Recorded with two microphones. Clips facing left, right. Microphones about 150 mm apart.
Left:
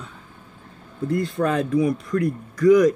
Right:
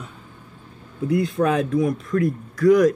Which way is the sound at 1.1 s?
5° right (ahead or behind).